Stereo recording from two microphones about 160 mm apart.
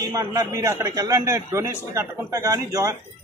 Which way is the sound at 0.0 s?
25° right (ahead or behind).